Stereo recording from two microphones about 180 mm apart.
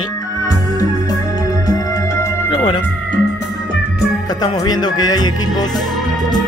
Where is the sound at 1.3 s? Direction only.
20° left (ahead or behind).